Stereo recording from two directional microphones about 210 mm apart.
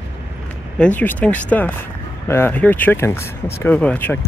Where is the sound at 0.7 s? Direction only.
5° left (ahead or behind).